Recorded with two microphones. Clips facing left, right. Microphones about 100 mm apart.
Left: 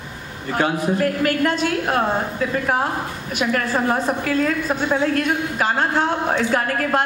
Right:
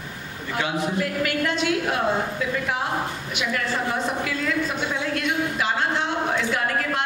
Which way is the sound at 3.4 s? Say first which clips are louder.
Left 6 dB; 45° left (ahead or behind).